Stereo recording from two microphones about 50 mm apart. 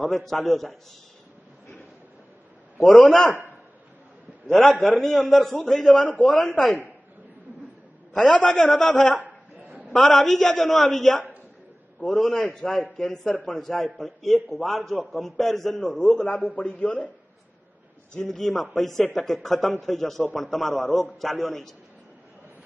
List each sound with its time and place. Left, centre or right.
0.0 s a man's voice: centre
4.5 s a man's voice: centre
6.0 s a man's voice: left
8.1 s a man's voice: centre
16.2 s a man's voice: left
18.3 s a man's voice: centre